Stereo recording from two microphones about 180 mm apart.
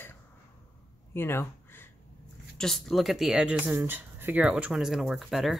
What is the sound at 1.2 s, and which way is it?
Speech, 15° left (ahead or behind).